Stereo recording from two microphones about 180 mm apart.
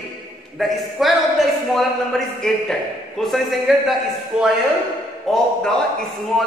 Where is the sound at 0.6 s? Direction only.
Centre (ahead or behind).